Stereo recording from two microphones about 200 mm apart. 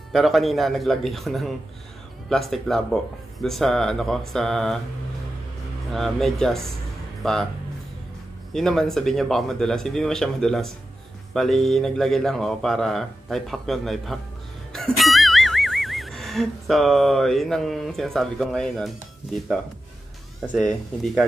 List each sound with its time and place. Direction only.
0.1 s speech: centre (ahead or behind)
5.9 s speech: centre (ahead or behind)
8.5 s speech: centre (ahead or behind)
14.7 s music: centre (ahead or behind)
21.0 s speech: 5° right (ahead or behind)